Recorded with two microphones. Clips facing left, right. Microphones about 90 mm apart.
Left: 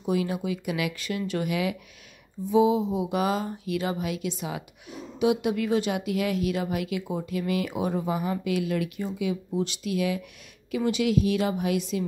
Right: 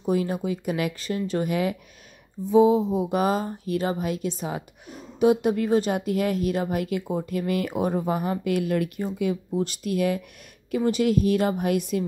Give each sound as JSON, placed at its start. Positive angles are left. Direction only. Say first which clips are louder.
{"t": 0.1, "sound": "speech", "louder": "right 2 dB", "side_deg": -40}